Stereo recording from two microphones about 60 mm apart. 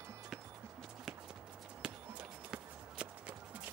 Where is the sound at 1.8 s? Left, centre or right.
Centre.